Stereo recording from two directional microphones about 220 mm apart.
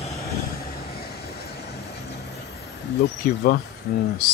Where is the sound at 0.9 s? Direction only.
45° left (ahead or behind).